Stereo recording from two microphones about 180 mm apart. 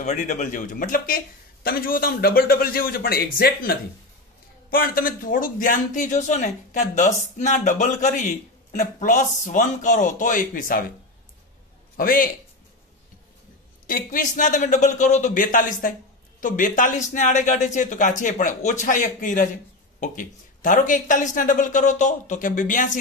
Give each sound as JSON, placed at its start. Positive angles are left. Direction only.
{"t": 0.0, "sound": "speech", "side_deg": 45}
{"t": 12.0, "sound": "speech", "side_deg": 50}
{"t": 13.8, "sound": "speech", "side_deg": 50}